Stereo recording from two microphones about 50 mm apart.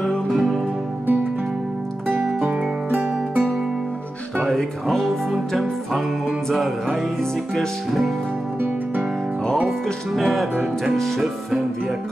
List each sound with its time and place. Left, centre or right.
0.3 s music: centre
2.4 s music: right
4.4 s speech: centre
5.3 s music: centre
9.5 s music: centre